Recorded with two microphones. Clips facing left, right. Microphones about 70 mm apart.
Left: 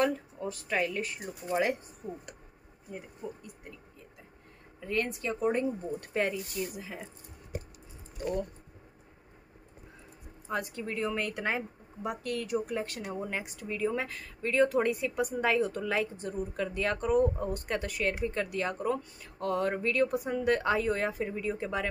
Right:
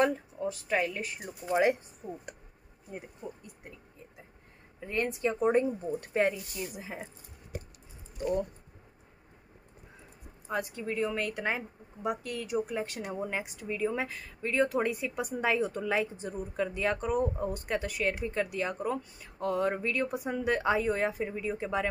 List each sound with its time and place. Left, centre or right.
0.0 s speech: centre
4.7 s speech: right
10.5 s a woman's voice: centre